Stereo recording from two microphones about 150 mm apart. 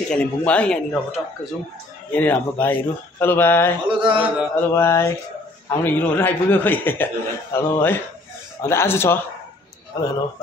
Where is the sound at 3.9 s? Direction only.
35° right (ahead or behind).